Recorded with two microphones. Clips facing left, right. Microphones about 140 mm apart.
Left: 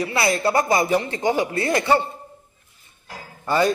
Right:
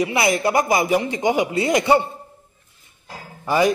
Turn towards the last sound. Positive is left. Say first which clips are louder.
# right 2 dB
turn(degrees=-10)  # may be behind; listen again after turning